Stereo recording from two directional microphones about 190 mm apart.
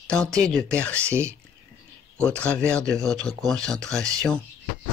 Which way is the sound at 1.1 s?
15° right (ahead or behind).